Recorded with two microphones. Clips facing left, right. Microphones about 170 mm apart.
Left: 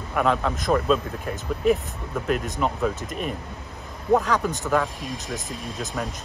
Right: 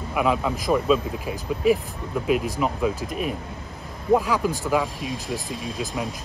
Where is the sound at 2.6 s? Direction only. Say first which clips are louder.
Right 1 dB; 5° right (ahead or behind).